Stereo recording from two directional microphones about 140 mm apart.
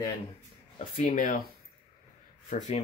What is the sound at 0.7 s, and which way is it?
Speech, 65° left (ahead or behind).